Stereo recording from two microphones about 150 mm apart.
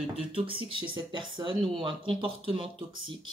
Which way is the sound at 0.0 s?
40° right (ahead or behind).